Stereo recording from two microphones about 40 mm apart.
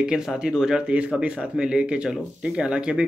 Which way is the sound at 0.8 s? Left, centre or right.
Right.